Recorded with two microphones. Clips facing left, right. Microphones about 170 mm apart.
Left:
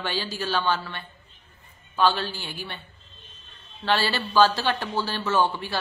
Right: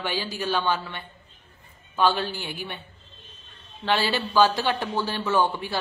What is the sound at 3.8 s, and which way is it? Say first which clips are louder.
A woman's voice: even; 15° right (ahead or behind).